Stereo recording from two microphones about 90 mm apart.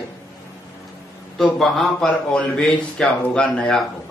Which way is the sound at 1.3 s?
Centre (ahead or behind).